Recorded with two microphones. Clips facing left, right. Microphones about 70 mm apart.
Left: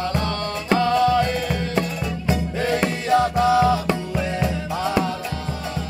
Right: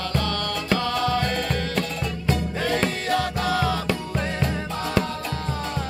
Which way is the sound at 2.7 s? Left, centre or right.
Left.